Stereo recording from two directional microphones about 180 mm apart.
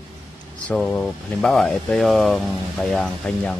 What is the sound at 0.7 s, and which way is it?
Speech, 10° left (ahead or behind).